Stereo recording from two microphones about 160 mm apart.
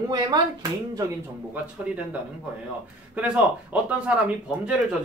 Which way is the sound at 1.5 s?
10° right (ahead or behind).